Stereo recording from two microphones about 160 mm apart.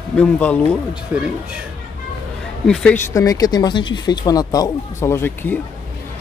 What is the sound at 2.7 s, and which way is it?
Speech, 5° left (ahead or behind).